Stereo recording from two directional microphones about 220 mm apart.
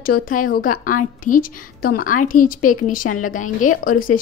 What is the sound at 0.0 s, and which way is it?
A woman's voice, 40° left (ahead or behind).